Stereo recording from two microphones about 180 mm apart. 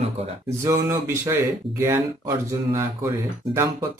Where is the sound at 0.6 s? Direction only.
15° right (ahead or behind).